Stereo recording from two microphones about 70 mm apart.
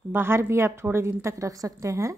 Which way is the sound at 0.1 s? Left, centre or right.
Right.